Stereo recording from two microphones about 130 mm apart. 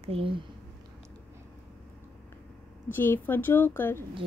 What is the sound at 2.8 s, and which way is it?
A woman's voice, 15° left (ahead or behind).